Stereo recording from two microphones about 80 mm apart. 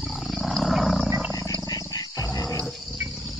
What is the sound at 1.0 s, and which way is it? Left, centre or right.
Wild animals, centre.